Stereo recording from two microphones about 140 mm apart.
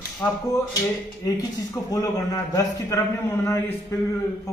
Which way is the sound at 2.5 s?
20° left (ahead or behind).